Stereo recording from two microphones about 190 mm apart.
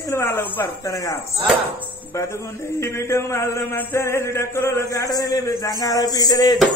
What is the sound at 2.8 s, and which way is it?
Male singing, 15° left (ahead or behind).